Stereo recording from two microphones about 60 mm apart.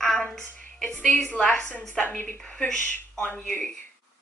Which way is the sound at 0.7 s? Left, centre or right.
Centre.